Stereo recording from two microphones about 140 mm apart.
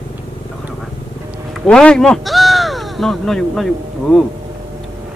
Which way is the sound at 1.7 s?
5° left (ahead or behind).